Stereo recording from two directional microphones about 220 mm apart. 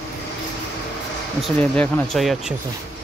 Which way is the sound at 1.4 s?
5° left (ahead or behind).